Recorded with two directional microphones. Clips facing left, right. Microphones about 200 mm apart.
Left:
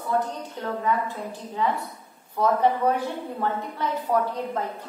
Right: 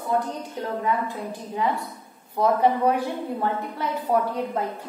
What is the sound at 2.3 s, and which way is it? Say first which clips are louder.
A woman's voice: right 1 dB; 10° right (ahead or behind).